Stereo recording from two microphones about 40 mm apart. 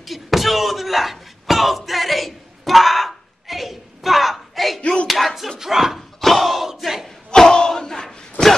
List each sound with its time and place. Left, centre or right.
0.0 s a sound: centre
5.0 s slap: centre
5.6 s slam: centre
6.2 s battle cry: centre
7.2 s battle cry: centre